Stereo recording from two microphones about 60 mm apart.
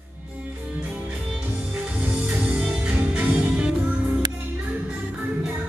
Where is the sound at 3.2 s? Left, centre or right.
Right.